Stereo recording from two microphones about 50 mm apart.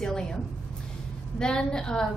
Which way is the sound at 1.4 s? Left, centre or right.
Centre.